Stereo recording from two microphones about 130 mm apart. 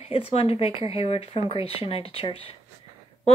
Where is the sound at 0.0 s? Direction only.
50° left (ahead or behind).